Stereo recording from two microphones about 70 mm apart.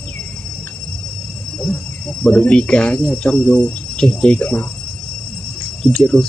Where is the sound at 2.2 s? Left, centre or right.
Centre.